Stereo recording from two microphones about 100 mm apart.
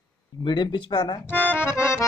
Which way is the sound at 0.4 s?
50° left (ahead or behind).